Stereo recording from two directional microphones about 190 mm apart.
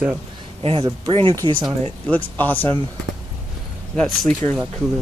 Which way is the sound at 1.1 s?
30° right (ahead or behind).